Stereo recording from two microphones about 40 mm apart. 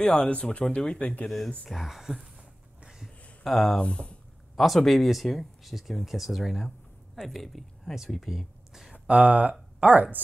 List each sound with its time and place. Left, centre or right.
0.0 s speech: left
1.7 s speech: centre
3.4 s speech: centre
3.7 s speech: left
4.6 s speech: centre
8.4 s a sound: centre
9.0 s speech: right